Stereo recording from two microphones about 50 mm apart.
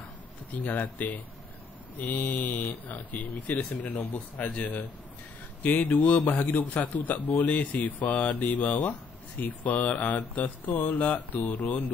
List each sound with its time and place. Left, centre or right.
0.6 s a man's voice: left